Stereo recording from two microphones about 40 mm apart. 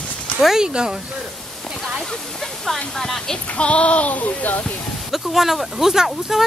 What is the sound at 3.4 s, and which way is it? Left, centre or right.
Speech, left.